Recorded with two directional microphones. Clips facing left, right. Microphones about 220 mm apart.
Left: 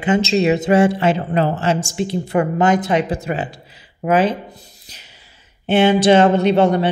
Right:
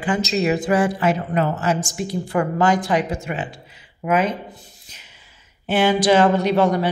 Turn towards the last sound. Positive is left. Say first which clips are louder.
# left 3 dB
turn(degrees=25)  # may be behind; listen again after turning